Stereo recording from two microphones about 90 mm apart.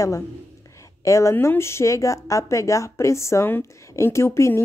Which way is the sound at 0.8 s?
35° left (ahead or behind).